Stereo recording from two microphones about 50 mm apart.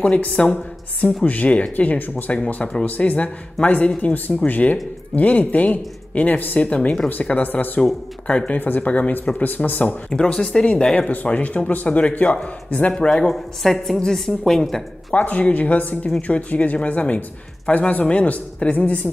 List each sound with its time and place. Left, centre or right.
0.0 s speech: left
1.0 s speech: left
8.3 s speech: left
8.5 s speech: left
10.1 s a woman's voice: centre
10.7 s speech: left
12.9 s a woman's voice: centre
15.1 s speech: left